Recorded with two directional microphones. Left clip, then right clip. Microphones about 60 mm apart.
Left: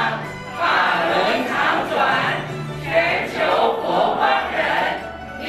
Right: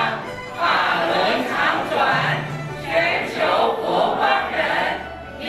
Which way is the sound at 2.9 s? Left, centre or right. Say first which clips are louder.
Left 1 dB; right.